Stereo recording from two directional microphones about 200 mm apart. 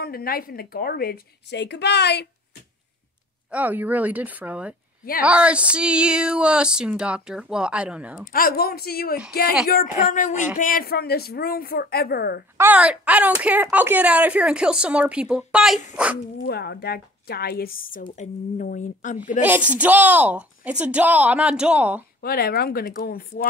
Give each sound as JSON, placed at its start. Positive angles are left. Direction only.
{"t": 0.0, "sound": "a woman's voice", "side_deg": 50}
{"t": 3.4, "sound": "speech", "side_deg": -5}
{"t": 8.3, "sound": "a woman's voice", "side_deg": 45}
{"t": 12.5, "sound": "speech", "side_deg": -10}
{"t": 16.4, "sound": "a woman's voice", "side_deg": 55}
{"t": 19.4, "sound": "speech", "side_deg": -10}
{"t": 22.2, "sound": "a woman's voice", "side_deg": 50}